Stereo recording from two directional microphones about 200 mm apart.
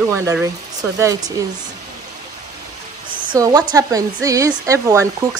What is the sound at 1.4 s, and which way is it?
Speech, 15° right (ahead or behind).